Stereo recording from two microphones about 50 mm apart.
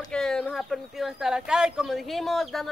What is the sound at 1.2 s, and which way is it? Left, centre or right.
Speech, centre.